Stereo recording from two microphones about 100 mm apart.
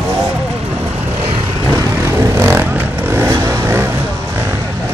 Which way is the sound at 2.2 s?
25° right (ahead or behind).